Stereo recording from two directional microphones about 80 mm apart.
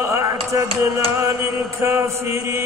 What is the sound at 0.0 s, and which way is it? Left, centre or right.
Music, right.